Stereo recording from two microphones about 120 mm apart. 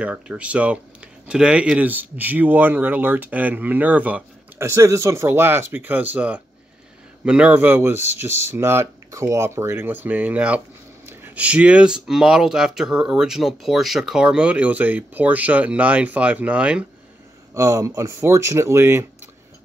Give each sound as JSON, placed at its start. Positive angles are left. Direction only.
{"t": 0.0, "sound": "speech", "side_deg": -10}
{"t": 17.6, "sound": "speech", "side_deg": -25}